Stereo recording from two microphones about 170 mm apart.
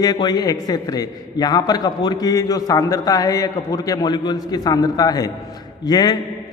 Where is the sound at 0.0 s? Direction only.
25° left (ahead or behind).